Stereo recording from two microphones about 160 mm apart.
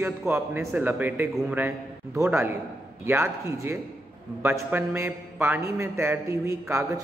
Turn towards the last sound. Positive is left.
turn(degrees=-15)  # may be behind; listen again after turning